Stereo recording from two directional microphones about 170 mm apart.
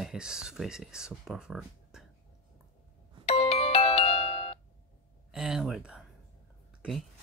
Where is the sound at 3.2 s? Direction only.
35° left (ahead or behind).